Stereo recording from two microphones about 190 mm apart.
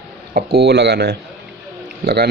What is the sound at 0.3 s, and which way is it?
Speech, 55° right (ahead or behind).